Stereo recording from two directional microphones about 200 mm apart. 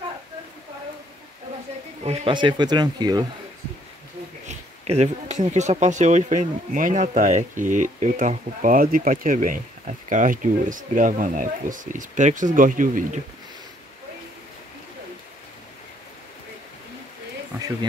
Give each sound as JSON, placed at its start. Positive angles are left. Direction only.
{"t": 2.0, "sound": "speech", "side_deg": -25}
{"t": 4.5, "sound": "speech", "side_deg": -35}